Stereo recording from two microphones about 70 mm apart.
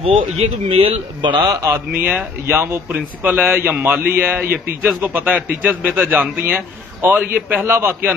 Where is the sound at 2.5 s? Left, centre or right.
Right.